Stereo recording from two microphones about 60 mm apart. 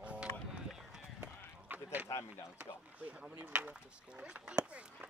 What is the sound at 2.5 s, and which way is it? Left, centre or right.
Speech, right.